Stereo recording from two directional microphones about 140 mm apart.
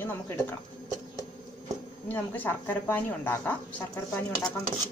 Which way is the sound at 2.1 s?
15° left (ahead or behind).